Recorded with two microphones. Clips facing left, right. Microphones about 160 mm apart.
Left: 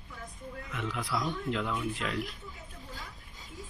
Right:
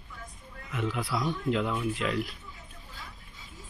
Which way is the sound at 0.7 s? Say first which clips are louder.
Right 4 dB; 5° right (ahead or behind).